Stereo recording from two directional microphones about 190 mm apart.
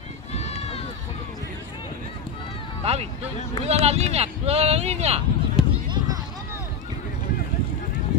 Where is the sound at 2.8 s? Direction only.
35° right (ahead or behind).